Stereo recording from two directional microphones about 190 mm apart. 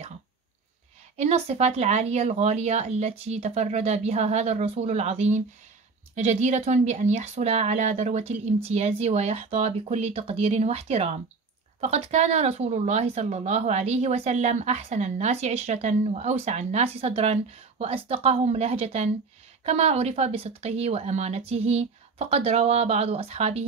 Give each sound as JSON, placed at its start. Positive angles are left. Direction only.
{"t": 1.1, "sound": "speech", "side_deg": -35}